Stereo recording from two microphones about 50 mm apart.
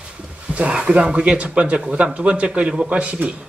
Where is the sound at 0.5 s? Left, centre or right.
Right.